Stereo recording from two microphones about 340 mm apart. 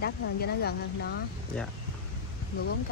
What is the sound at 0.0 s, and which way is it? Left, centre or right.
Speech, left.